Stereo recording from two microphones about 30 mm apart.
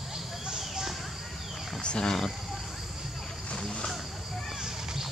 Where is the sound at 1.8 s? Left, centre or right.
Left.